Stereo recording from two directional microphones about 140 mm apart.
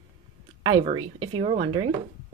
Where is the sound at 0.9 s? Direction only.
40° right (ahead or behind).